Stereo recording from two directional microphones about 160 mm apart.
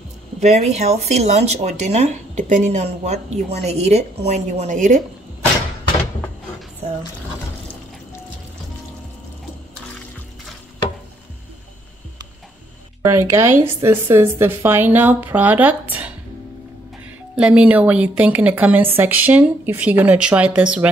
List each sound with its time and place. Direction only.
0.4 s speech: 45° right (ahead or behind)
13.0 s a woman's voice: 15° right (ahead or behind)
17.4 s a woman's voice: 5° right (ahead or behind)